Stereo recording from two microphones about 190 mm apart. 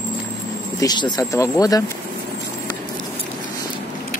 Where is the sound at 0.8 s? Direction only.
20° left (ahead or behind).